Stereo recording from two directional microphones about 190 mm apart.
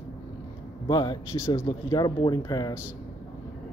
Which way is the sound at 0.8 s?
25° left (ahead or behind).